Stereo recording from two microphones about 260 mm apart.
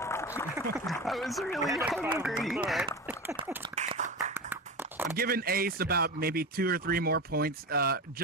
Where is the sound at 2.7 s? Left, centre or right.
Centre.